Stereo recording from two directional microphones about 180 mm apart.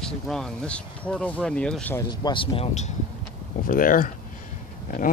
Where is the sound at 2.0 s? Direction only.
25° left (ahead or behind).